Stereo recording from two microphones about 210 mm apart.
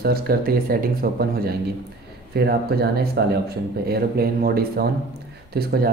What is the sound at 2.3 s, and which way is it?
Speech, 50° right (ahead or behind).